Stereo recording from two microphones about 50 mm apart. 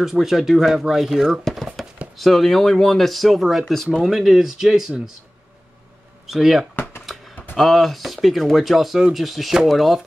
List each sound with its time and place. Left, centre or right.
0.0 s speech: centre
1.4 s a sound: centre
2.1 s speech: centre
6.2 s speech: centre
6.7 s a sound: left
7.5 s speech: centre